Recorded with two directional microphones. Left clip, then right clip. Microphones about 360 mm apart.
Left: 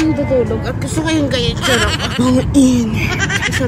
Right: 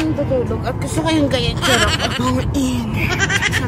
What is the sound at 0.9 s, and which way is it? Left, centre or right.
Speech, centre.